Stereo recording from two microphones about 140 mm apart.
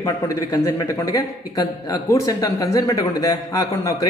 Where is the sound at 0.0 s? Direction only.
20° left (ahead or behind).